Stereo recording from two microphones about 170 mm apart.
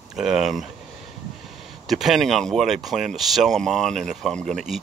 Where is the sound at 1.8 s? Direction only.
Centre (ahead or behind).